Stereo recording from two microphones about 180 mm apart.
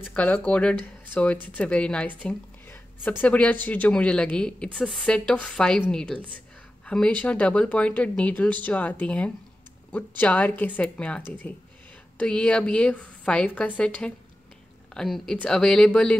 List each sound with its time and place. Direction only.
0.0 s a woman's voice: 5° left (ahead or behind)